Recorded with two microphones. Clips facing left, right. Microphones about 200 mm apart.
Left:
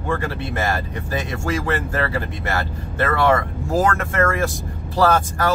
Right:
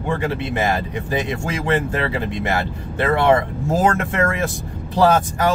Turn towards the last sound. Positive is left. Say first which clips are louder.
# right 2 dB
turn(degrees=-20)  # may be behind; listen again after turning